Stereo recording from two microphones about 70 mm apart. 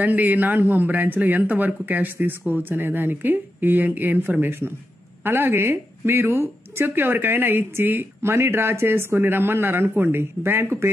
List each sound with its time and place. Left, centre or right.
0.0 s a woman's voice: right